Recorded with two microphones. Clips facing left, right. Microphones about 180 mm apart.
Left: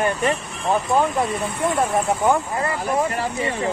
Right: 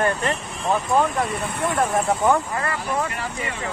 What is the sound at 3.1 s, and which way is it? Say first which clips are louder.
Speech: left 6 dB; 35° left (ahead or behind).